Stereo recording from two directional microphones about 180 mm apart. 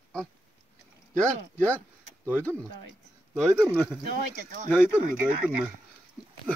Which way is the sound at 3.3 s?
10° right (ahead or behind).